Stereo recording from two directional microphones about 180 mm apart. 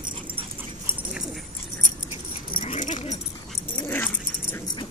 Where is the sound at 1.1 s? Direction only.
Centre (ahead or behind).